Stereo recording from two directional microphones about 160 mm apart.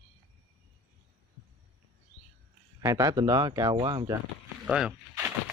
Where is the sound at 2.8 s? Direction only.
20° right (ahead or behind).